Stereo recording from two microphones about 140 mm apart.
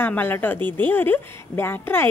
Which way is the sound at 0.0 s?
15° left (ahead or behind).